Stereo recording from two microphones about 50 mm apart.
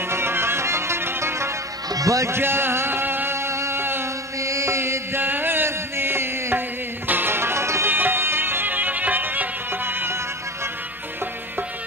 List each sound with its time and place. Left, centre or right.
0.1 s music: right
2.0 s speech: right
2.3 s music: right
4.4 s mantra: right
5.2 s music: right
7.9 s music: right